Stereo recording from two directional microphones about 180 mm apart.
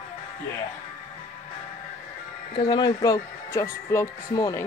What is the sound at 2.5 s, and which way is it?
Speech, 25° left (ahead or behind).